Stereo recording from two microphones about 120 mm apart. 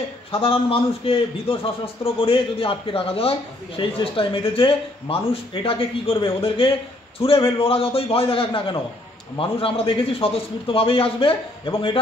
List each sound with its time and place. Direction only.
0.3 s a man's voice: 50° left (ahead or behind)